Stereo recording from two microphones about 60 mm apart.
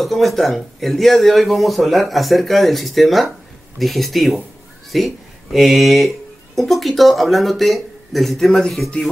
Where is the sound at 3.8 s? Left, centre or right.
Centre.